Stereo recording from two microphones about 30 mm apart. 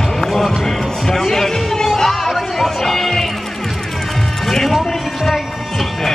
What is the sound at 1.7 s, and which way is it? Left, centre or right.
Music, centre.